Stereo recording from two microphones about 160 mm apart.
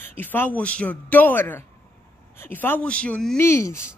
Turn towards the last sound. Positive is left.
turn(degrees=20)  # may be behind; listen again after turning